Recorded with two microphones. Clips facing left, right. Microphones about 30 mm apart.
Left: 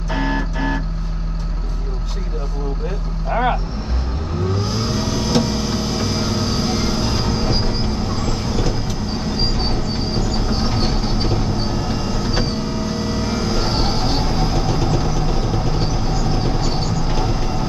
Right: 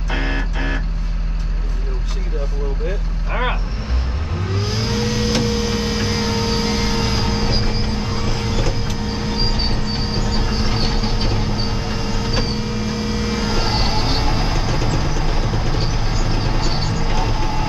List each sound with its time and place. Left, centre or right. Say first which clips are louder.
0.1 s guitar: left 2 dB; right
3.3 s vehicle: left 4 dB; right
4.6 s vehicle: even; right
5.0 s vehicle: left 1 dB; right
8.1 s vehicle: left 1 dB; centre
8.4 s vehicle: even; right
10.3 s train: left 1 dB; right
12.3 s vehicle: left 1 dB; centre